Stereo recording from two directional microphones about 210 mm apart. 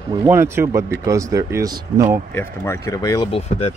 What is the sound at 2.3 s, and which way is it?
Speech, 15° left (ahead or behind).